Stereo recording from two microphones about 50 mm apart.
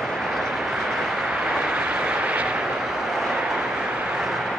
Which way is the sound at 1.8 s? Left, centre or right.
Right.